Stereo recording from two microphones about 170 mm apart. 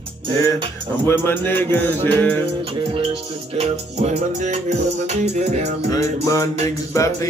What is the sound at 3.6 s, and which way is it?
Music, 40° right (ahead or behind).